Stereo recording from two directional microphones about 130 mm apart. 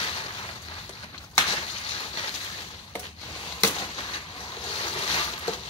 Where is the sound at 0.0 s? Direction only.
45° left (ahead or behind).